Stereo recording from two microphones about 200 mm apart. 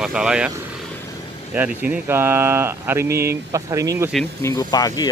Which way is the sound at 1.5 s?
5° right (ahead or behind).